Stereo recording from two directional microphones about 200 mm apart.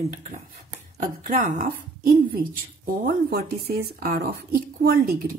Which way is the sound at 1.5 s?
45° right (ahead or behind).